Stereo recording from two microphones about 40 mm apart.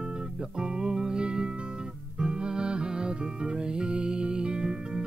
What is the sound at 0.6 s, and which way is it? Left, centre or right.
Music, centre.